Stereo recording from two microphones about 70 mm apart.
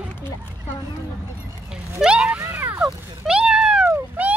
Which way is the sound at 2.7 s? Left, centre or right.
Centre.